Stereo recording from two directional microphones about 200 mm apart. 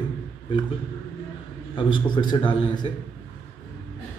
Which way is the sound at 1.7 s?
25° left (ahead or behind).